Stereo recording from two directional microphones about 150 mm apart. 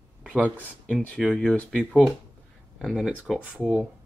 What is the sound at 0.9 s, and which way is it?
Speech, centre (ahead or behind).